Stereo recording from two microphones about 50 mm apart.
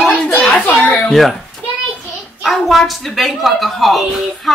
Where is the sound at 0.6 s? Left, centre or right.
Left.